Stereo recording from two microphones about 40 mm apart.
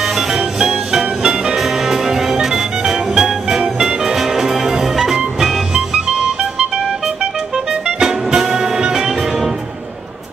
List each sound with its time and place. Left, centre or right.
0.3 s music: centre
5.9 s music: right
8.0 s music: centre